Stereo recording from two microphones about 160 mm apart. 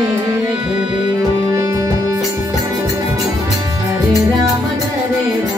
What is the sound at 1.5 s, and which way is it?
Music, 20° right (ahead or behind).